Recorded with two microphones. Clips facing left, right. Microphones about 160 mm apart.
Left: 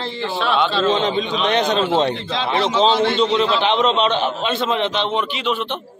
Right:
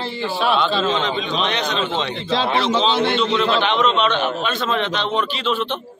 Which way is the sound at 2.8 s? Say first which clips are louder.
Left 2 dB; 30° left (ahead or behind).